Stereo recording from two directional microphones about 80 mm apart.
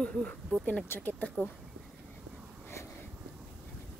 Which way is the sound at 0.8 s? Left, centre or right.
Left.